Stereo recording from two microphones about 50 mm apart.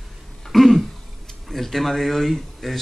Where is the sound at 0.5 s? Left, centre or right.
Centre.